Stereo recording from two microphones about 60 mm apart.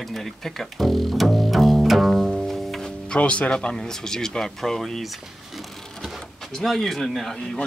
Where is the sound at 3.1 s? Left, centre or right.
Centre.